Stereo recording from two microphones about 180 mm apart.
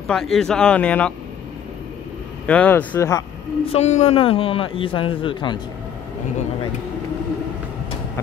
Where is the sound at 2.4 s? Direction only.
10° left (ahead or behind).